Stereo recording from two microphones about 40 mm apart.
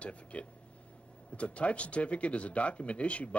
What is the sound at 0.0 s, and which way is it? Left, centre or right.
Speech, left.